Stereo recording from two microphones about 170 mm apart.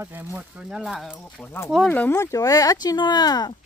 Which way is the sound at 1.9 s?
15° left (ahead or behind).